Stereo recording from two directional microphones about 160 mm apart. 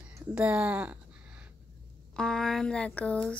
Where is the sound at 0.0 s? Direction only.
5° right (ahead or behind).